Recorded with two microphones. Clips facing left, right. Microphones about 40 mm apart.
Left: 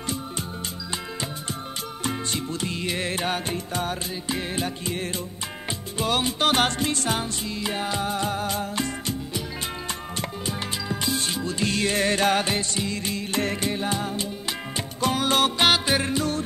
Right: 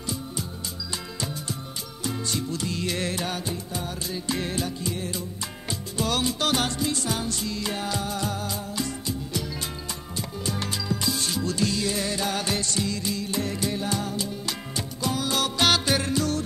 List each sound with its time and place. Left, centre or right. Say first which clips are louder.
2.0 s music: even; left
3.2 s music: left 3 dB; left
4.1 s music: even; centre
4.6 s music: left 1 dB; left
5.7 s music: left 2 dB; left
6.5 s music: left 3 dB; left
10.4 s music: even; left
11.7 s music: left 4 dB; left
12.4 s music: left 1 dB; left
13.0 s music: left 2 dB; left
15.0 s music: left 5 dB; left
15.6 s music: left 2 dB; left